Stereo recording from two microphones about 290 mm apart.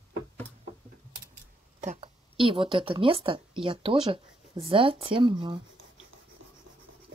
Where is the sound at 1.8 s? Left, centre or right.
Right.